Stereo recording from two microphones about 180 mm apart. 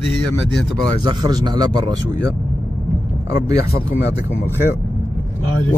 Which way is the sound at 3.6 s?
60° left (ahead or behind).